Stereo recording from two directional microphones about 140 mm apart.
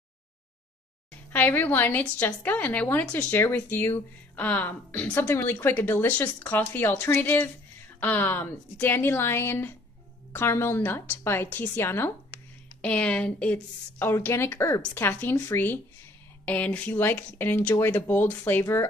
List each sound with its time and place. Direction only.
1.3 s a woman's voice: 15° left (ahead or behind)